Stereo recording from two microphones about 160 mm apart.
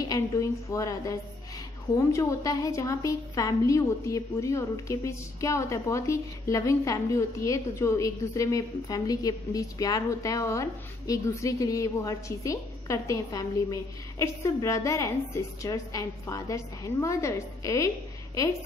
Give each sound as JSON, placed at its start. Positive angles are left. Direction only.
{"t": 0.0, "sound": "a woman's voice", "side_deg": 20}